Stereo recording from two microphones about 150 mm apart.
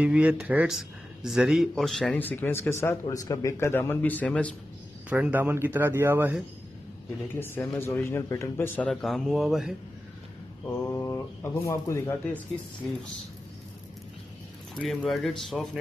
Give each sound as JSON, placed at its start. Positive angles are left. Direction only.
{"t": 0.0, "sound": "speech", "side_deg": -5}
{"t": 5.1, "sound": "speech", "side_deg": -10}
{"t": 7.3, "sound": "speech", "side_deg": 15}
{"t": 10.7, "sound": "speech", "side_deg": 20}
{"t": 14.8, "sound": "speech", "side_deg": 5}